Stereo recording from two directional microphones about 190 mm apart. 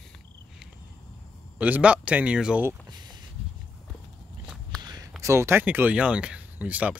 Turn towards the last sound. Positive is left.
turn(degrees=-5)  # may be behind; listen again after turning